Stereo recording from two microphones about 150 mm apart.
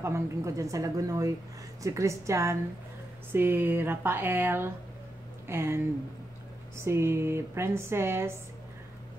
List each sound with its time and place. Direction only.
0.0 s a woman's voice: 20° right (ahead or behind)
6.8 s speech: 15° right (ahead or behind)